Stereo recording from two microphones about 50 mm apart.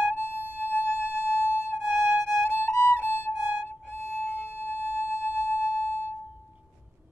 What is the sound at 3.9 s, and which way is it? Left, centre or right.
Music, left.